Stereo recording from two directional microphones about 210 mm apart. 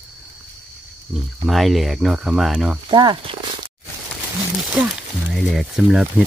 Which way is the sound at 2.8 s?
20° right (ahead or behind).